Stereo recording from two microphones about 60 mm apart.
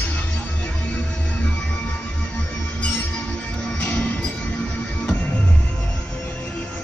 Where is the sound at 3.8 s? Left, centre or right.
Centre.